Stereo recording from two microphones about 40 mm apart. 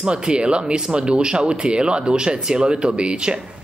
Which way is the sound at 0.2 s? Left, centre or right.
Right.